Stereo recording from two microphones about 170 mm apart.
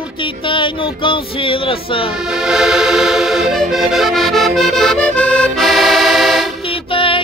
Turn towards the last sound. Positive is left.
turn(degrees=30)  # may be behind; listen again after turning